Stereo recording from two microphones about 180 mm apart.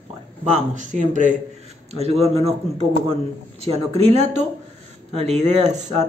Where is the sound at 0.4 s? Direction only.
45° right (ahead or behind).